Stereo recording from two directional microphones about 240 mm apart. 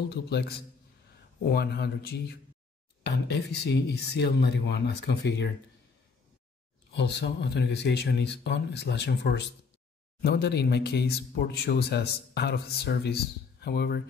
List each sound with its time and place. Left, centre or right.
0.1 s speech: left
7.0 s speech: left